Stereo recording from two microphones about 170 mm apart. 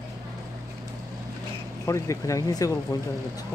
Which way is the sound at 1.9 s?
20° left (ahead or behind).